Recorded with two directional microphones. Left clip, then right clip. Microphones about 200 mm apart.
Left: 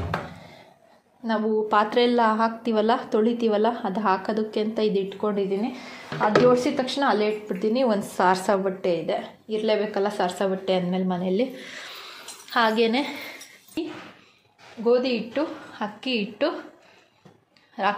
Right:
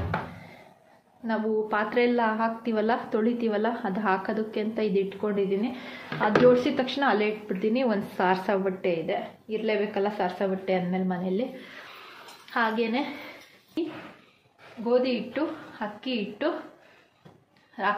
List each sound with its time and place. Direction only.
1.2 s speech: 20° left (ahead or behind)
6.0 s a woman's voice: centre (ahead or behind); by 13.0 s 40° left (ahead or behind)
14.9 s a woman's voice: 30° left (ahead or behind)
17.8 s a woman's voice: 35° left (ahead or behind)